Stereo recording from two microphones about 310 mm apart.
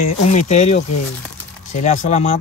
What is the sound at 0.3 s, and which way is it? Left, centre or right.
Speech, left.